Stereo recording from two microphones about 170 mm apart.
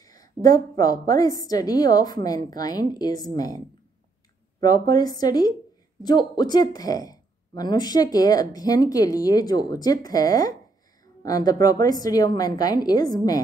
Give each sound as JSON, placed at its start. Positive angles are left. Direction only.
{"t": 0.0, "sound": "a woman's voice", "side_deg": 20}